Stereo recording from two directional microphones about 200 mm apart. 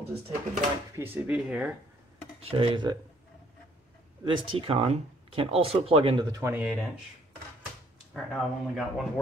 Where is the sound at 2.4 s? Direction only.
30° right (ahead or behind).